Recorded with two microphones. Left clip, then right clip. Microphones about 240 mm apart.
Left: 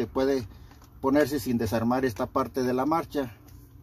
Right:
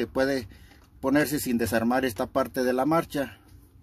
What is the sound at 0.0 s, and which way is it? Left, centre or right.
Speech, right.